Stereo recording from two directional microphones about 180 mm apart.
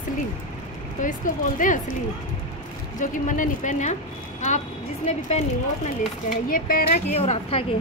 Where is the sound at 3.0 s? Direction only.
45° left (ahead or behind).